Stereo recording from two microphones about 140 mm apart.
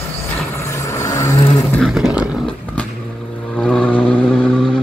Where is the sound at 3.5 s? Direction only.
5° left (ahead or behind).